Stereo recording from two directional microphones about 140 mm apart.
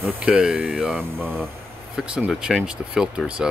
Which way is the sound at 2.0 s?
5° right (ahead or behind).